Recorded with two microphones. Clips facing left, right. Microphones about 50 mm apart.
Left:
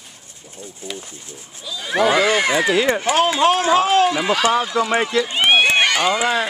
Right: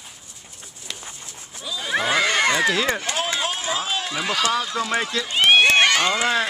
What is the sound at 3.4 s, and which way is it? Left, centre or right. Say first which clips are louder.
Speech: left 11 dB; left.